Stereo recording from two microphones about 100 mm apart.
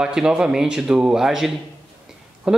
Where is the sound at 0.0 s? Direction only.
5° right (ahead or behind).